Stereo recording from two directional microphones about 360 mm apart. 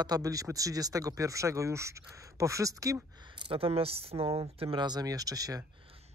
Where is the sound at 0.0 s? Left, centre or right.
Centre.